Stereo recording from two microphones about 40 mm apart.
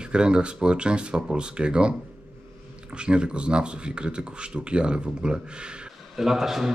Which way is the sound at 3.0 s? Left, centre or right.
Right.